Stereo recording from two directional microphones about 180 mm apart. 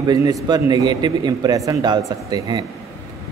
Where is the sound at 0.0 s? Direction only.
20° right (ahead or behind).